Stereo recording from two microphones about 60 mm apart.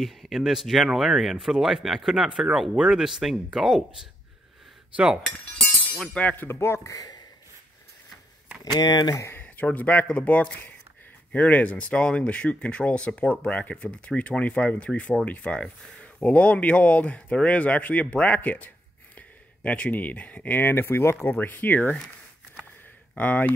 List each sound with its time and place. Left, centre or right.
0.0 s speech: centre
4.9 s speech: centre
6.3 s speech: left
6.9 s speech: left
8.9 s speech: left
9.3 s speech: left
21.4 s speech: left
23.1 s speech: left